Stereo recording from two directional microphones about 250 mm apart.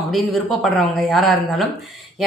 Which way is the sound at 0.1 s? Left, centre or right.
Centre.